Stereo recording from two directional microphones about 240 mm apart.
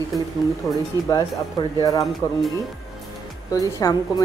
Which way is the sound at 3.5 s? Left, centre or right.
Centre.